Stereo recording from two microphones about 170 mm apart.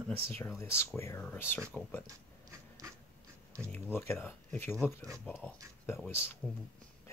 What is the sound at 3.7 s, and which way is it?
Speech, 15° left (ahead or behind).